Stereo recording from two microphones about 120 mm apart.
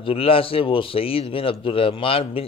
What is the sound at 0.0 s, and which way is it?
Speech, 50° left (ahead or behind).